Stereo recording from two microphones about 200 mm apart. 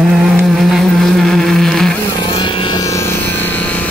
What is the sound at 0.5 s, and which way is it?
Motorboat, centre (ahead or behind).